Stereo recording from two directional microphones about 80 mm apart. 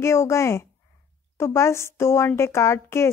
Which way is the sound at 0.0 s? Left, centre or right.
Left.